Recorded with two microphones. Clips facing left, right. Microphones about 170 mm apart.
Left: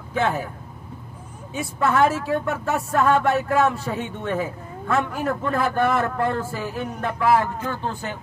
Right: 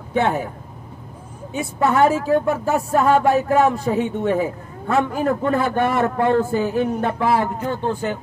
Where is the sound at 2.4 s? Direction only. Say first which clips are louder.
Right 5 dB; 35° right (ahead or behind).